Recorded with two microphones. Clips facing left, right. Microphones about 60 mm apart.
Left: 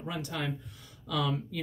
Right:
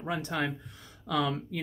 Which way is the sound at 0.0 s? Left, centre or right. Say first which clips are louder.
Right 4 dB; right.